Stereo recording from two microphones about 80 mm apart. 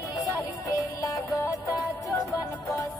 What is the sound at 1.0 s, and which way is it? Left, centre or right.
Music, left.